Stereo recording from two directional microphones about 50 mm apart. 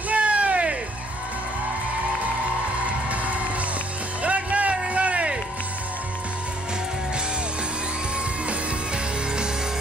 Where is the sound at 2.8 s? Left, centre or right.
Right.